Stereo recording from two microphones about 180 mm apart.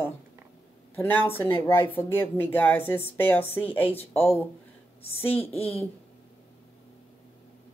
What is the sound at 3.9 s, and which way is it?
Speech, 35° left (ahead or behind).